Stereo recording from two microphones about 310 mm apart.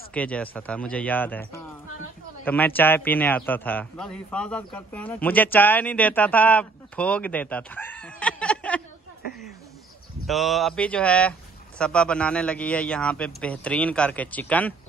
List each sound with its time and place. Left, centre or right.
0.1 s a man's voice: centre
10.2 s a man's voice: centre